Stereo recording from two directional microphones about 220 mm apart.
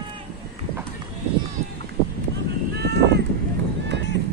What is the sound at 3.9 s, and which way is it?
Run, 50° right (ahead or behind).